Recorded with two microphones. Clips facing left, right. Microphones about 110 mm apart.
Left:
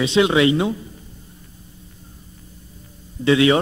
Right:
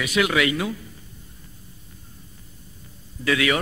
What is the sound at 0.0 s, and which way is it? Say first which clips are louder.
Speech: left 6 dB; 25° left (ahead or behind).